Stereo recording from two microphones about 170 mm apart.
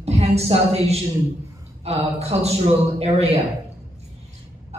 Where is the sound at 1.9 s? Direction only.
40° right (ahead or behind).